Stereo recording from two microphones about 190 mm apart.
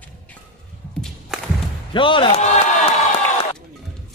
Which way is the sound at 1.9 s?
25° left (ahead or behind).